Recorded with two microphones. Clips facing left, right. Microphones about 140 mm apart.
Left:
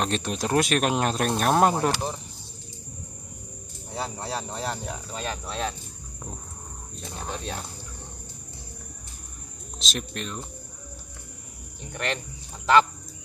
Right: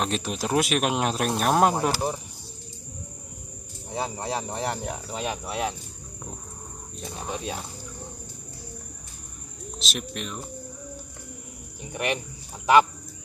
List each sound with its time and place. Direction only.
0.0 s speech: centre (ahead or behind)
3.9 s speech: 15° right (ahead or behind)
7.0 s speech: 5° right (ahead or behind)
9.8 s speech: 5° right (ahead or behind)
11.8 s speech: 10° right (ahead or behind)